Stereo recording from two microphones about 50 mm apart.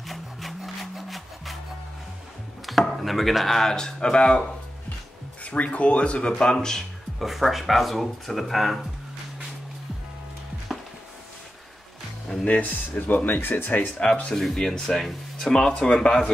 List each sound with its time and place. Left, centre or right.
0.0 s rub: centre
2.6 s speech: centre
7.2 s speech: centre
12.3 s speech: left
14.3 s speech: centre